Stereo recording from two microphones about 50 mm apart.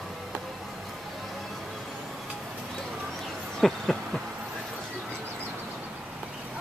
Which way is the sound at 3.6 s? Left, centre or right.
Centre.